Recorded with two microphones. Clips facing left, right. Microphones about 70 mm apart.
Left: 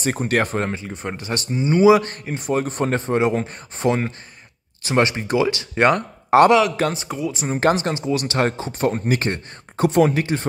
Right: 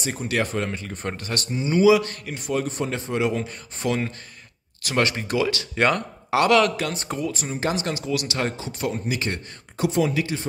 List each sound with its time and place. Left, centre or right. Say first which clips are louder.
0.0 s speech: left 5 dB; left
0.9 s speech: left 1 dB; centre
1.6 s speech: left 3 dB; left
7.1 s speech: left 2 dB; centre
7.4 s speech: left 10 dB; left